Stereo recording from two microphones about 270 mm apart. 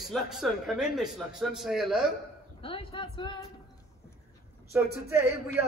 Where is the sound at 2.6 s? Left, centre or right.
Centre.